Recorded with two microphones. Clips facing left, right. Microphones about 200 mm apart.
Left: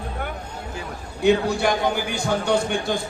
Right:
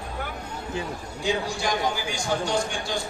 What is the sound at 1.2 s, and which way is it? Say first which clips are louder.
A man's voice: left 8 dB; 60° left (ahead or behind).